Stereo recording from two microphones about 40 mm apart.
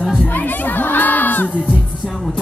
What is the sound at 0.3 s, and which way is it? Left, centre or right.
Music, left.